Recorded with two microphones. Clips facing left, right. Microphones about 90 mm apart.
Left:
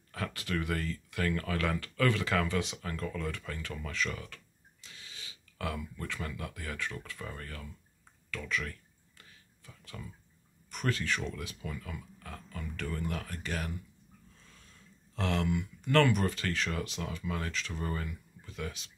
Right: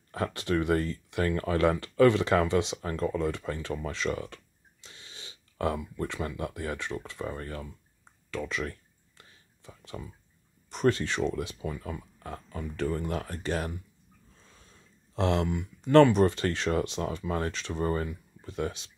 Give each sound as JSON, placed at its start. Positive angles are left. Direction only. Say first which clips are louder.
{"t": 0.1, "sound": "speech", "louder": "right 7 dB", "side_deg": -30}
{"t": 8.3, "sound": "a sound", "louder": "right 4 dB", "side_deg": -25}
{"t": 10.7, "sound": "speech", "louder": "right 7 dB", "side_deg": -30}